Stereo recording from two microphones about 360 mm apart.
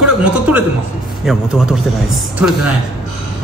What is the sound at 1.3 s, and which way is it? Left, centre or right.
Speech, centre.